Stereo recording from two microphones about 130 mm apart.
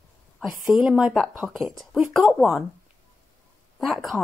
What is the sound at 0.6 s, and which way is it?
A woman's voice, 10° right (ahead or behind).